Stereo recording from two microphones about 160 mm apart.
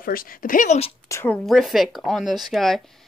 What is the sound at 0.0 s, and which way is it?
Speech, 60° left (ahead or behind).